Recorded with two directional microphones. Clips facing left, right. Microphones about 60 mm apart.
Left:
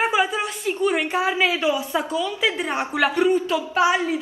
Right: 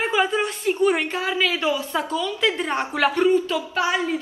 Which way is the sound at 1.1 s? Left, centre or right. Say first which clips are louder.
Left 2 dB; left.